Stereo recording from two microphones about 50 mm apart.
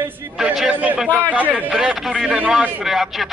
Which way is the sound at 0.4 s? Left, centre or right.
Centre.